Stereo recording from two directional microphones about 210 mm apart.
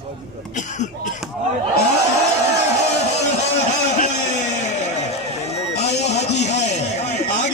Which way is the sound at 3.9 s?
35° left (ahead or behind).